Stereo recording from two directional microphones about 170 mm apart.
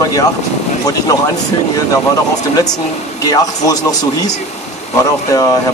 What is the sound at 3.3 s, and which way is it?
A man's voice, 20° left (ahead or behind).